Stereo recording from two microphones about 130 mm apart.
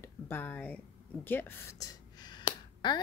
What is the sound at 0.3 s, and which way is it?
Speech, 15° left (ahead or behind).